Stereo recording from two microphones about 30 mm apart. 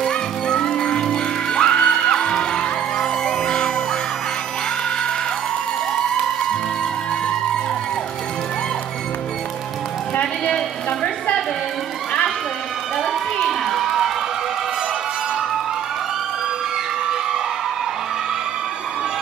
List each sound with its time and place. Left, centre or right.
0.0 s music: centre
10.4 s a sound: left
13.5 s crowd: centre